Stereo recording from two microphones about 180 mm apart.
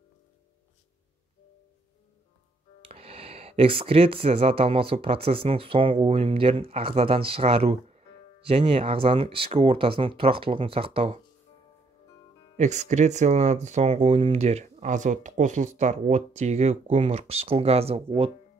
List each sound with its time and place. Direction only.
2.8 s speech: 30° right (ahead or behind)
12.5 s speech: 40° right (ahead or behind)